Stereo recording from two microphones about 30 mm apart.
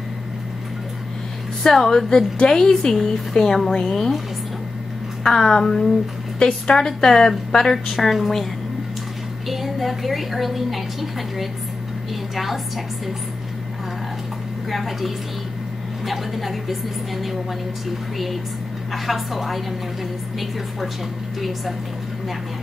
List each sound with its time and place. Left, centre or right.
1.6 s a woman's voice: centre
1.9 s a woman's voice: centre
5.2 s a woman's voice: centre
6.9 s a woman's voice: centre
9.5 s a woman's voice: centre
14.7 s a woman's voice: centre
21.4 s a woman's voice: centre